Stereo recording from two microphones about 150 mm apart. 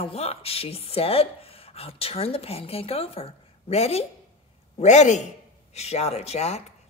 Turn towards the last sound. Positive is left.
turn(degrees=45)  # may be behind; listen again after turning